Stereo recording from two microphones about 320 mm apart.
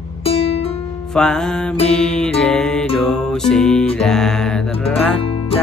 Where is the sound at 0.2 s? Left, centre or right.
Centre.